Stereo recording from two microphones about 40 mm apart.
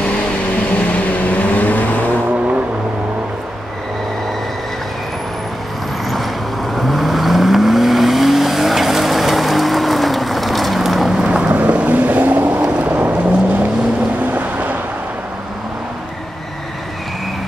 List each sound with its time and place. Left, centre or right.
0.9 s vehicle: left
6.7 s vehicle: centre
11.2 s vehicle: right
11.5 s boat: right
14.2 s vehicle: right